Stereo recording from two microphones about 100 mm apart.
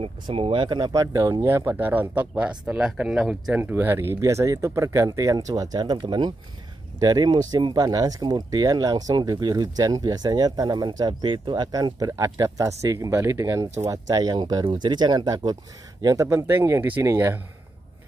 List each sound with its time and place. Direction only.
0.0 s speech: 70° right (ahead or behind); by 1.0 s 45° right (ahead or behind)
1.0 s speech: 35° right (ahead or behind); by 3.5 s 5° right (ahead or behind)
3.5 s speech: 20° right (ahead or behind); by 16.3 s 40° right (ahead or behind)
16.3 s speech: 25° right (ahead or behind)